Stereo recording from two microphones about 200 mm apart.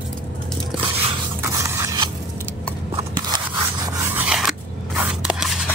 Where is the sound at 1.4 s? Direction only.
15° right (ahead or behind).